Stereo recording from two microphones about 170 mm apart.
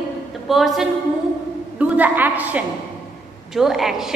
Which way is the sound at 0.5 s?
Centre (ahead or behind).